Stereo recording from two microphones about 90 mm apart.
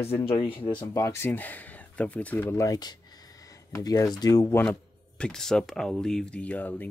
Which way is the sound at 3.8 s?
45° left (ahead or behind).